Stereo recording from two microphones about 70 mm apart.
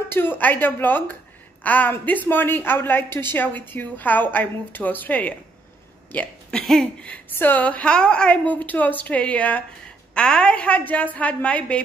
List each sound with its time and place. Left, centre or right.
0.1 s a woman's voice: left
6.7 s a woman's voice: centre
7.1 s a woman's voice: left